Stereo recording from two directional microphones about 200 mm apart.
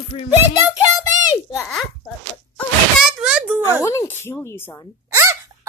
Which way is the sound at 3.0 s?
5° right (ahead or behind).